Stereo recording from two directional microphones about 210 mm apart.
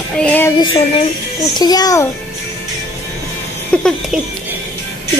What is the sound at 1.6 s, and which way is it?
Speech, 20° left (ahead or behind).